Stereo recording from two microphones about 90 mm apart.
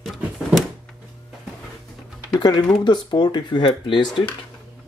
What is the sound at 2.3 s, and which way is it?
Speech, 50° left (ahead or behind).